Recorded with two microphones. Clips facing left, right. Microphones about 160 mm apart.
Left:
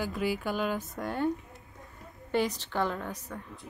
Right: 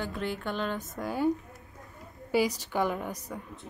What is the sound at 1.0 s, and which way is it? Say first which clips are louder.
A woman's voice: right 5 dB; 5° right (ahead or behind).